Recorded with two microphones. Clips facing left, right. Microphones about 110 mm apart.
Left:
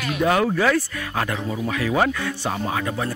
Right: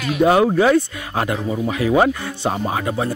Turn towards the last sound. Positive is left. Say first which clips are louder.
# right 3 dB
turn(degrees=-25)  # may be behind; listen again after turning